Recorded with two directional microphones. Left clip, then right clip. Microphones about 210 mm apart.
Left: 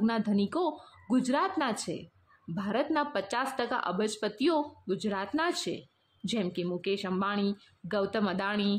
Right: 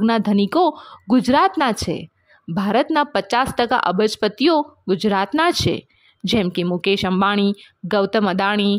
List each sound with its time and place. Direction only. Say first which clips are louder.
0.0 s speech: right 12 dB; 40° right (ahead or behind)